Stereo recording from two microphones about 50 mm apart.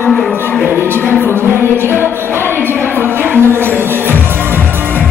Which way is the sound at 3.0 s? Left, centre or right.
Right.